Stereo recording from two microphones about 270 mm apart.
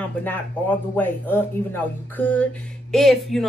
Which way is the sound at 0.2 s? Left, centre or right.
Centre.